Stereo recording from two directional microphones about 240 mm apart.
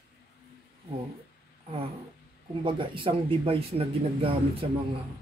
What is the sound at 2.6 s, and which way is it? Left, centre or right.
Speech, right.